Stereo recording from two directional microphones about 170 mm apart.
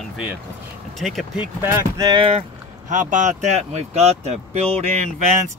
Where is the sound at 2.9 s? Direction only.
45° right (ahead or behind).